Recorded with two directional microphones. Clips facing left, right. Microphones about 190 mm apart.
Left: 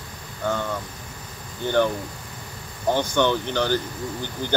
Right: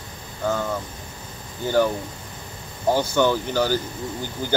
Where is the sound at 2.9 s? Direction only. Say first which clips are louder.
Right 1 dB; 10° right (ahead or behind).